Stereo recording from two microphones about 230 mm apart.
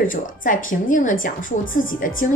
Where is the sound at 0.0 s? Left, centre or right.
Left.